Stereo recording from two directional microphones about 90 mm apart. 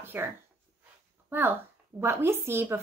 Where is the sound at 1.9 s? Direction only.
30° right (ahead or behind).